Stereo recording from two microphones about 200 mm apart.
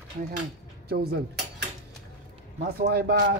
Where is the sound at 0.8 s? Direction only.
50° right (ahead or behind).